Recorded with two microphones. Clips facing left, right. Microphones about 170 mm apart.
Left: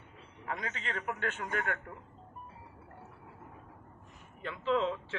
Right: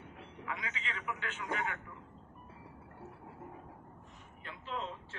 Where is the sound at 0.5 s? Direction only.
45° left (ahead or behind).